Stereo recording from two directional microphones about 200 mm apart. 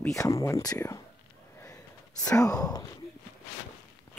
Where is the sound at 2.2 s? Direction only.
15° left (ahead or behind).